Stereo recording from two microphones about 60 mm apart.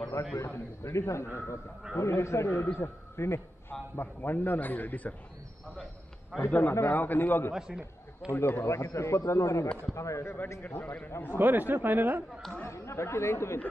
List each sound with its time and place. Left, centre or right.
0.2 s a man's voice: left
6.3 s speech: centre
6.7 s a man's voice: left
7.0 s a man's voice: left
7.5 s a man's voice: centre
8.3 s a man's voice: left
10.6 s a man's voice: left
11.3 s speech: right
12.6 s a man's voice: left